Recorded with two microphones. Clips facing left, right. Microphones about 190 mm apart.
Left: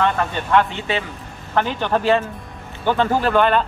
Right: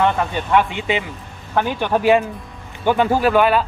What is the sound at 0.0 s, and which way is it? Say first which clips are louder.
Speech: right 2 dB; 10° right (ahead or behind).